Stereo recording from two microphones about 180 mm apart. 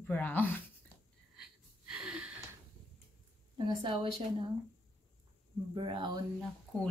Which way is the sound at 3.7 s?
25° right (ahead or behind).